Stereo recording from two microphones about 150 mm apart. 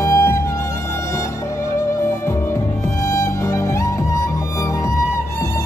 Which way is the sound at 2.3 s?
20° left (ahead or behind).